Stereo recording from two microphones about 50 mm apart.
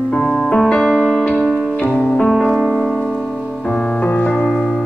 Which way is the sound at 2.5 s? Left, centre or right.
Centre.